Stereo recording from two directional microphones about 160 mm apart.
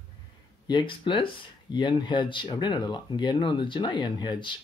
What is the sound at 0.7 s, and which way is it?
Speech, 30° left (ahead or behind).